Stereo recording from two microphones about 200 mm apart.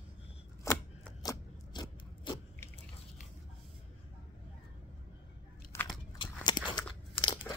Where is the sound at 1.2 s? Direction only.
20° left (ahead or behind).